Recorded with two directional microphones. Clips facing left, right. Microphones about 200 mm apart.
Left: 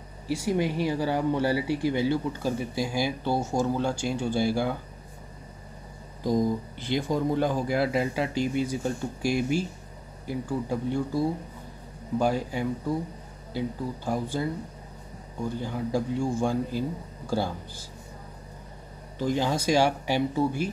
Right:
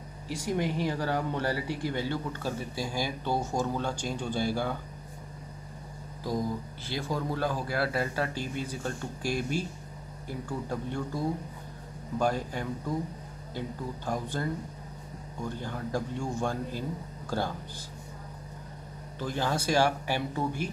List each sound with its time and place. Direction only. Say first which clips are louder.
0.4 s speech: left 3 dB; 10° left (ahead or behind)
6.2 s speech: left 6 dB; 15° left (ahead or behind)
19.1 s speech: left 5 dB; 15° left (ahead or behind)